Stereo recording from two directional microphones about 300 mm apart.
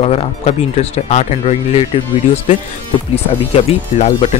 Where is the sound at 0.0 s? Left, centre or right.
Centre.